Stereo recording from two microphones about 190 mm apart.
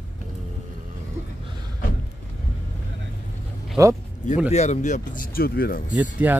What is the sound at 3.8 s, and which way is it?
Speech, 15° right (ahead or behind).